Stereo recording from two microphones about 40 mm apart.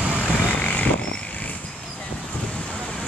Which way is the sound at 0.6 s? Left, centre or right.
Left.